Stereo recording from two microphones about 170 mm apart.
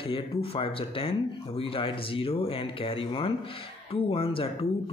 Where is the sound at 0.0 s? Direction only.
30° left (ahead or behind).